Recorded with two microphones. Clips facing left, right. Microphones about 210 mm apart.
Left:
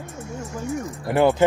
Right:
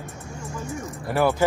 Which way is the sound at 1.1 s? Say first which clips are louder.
Left 4 dB; 15° left (ahead or behind).